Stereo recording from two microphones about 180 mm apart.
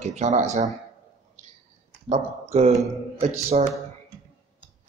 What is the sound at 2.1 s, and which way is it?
Speech, 40° right (ahead or behind).